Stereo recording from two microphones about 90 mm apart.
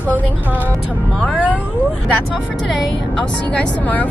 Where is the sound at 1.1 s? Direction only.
10° left (ahead or behind).